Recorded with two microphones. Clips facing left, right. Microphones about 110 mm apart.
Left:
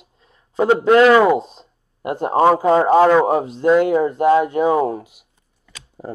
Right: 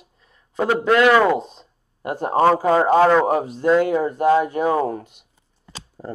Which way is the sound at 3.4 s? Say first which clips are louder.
Left 2 dB; 25° left (ahead or behind).